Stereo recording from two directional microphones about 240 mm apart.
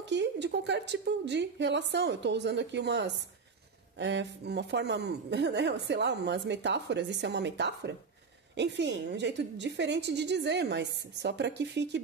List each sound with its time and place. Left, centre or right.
0.0 s speech: right